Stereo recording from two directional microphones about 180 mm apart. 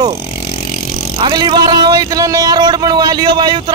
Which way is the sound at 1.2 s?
25° right (ahead or behind).